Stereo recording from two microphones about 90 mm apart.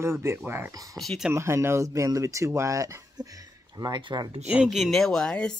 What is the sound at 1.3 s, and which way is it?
Speech, 30° right (ahead or behind).